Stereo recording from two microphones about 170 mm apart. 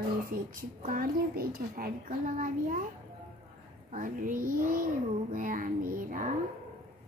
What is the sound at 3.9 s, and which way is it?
Speech, 50° right (ahead or behind).